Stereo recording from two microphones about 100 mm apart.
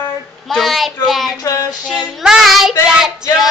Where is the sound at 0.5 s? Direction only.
Centre (ahead or behind).